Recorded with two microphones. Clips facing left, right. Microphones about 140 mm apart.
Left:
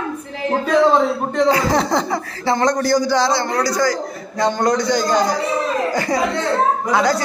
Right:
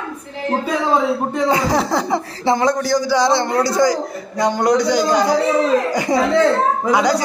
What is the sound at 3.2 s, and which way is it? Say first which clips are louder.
Speech: right 2 dB; 25° right (ahead or behind).